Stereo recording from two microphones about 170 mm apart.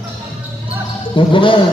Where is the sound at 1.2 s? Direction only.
30° left (ahead or behind).